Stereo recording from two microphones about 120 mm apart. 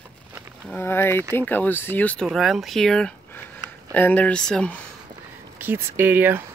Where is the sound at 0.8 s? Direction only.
20° left (ahead or behind).